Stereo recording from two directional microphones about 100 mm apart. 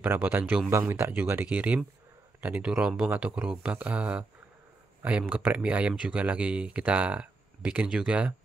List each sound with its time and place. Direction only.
0.0 s speech: 20° right (ahead or behind)
5.3 s speech: 15° right (ahead or behind)